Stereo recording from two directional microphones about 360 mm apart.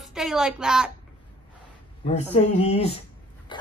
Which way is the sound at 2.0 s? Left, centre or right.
Centre.